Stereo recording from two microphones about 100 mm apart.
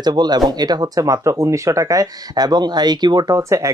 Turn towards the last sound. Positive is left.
turn(degrees=-30)  # may be behind; listen again after turning